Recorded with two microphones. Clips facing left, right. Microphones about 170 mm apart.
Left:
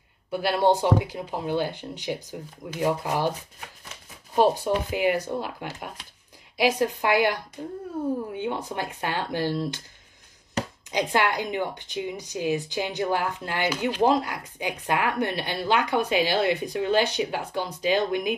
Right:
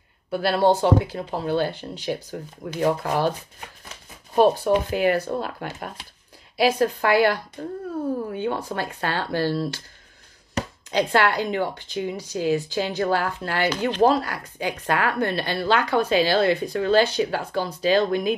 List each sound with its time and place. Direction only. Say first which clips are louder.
0.3 s speech: right 2 dB; 15° left (ahead or behind)
4.9 s speech: right 3 dB; 15° left (ahead or behind)
10.9 s speech: right 4 dB; 15° left (ahead or behind)